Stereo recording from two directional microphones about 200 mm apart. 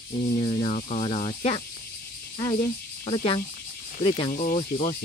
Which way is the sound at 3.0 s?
25° left (ahead or behind).